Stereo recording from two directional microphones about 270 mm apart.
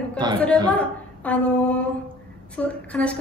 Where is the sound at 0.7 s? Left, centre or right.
Centre.